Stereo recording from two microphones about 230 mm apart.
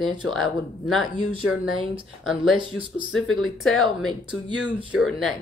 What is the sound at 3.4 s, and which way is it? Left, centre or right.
Speech, centre.